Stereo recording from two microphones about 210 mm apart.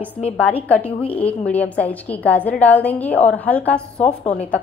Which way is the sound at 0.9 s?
25° left (ahead or behind).